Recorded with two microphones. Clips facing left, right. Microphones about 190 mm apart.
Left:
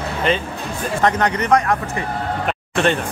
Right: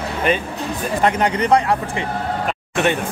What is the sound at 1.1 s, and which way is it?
Speech, 30° right (ahead or behind).